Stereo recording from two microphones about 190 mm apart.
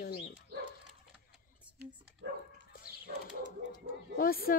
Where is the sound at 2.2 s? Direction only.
75° right (ahead or behind).